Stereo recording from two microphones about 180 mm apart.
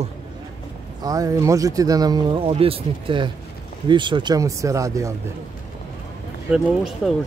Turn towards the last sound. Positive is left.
turn(degrees=0)  # may be behind; listen again after turning